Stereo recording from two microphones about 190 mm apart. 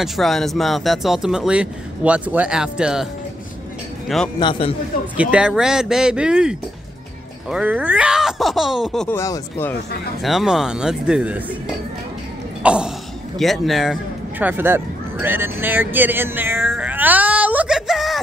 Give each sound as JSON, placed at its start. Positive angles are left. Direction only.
{"t": 0.0, "sound": "speech", "side_deg": 0}
{"t": 4.4, "sound": "a man's voice", "side_deg": 25}
{"t": 5.1, "sound": "speech", "side_deg": -5}
{"t": 9.1, "sound": "speech", "side_deg": 15}
{"t": 10.2, "sound": "speech", "side_deg": 0}
{"t": 12.6, "sound": "a sound", "side_deg": -5}
{"t": 13.4, "sound": "speech", "side_deg": 0}
{"t": 14.4, "sound": "a sound", "side_deg": -10}